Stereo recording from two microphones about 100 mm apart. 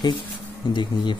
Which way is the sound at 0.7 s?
50° left (ahead or behind).